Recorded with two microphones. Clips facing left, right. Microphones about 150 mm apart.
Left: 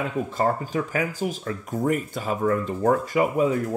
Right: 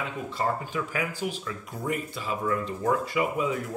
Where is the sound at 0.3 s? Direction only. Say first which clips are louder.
Left 3 dB; 45° left (ahead or behind).